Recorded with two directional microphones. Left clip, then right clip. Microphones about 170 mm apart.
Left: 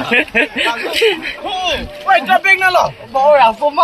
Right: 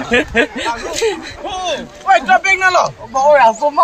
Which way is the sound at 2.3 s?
Centre (ahead or behind).